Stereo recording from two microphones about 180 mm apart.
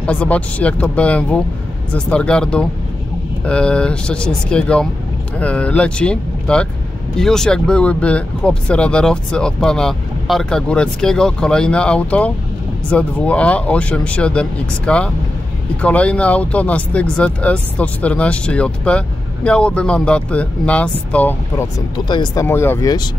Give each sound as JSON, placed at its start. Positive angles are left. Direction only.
{"t": 0.0, "sound": "speech", "side_deg": 5}
{"t": 21.9, "sound": "speech", "side_deg": 25}